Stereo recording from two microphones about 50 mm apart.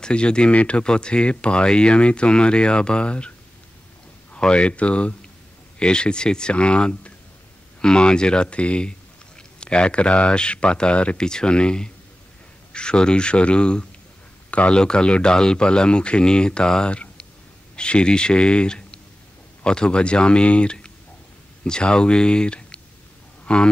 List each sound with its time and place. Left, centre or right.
0.0 s speech: centre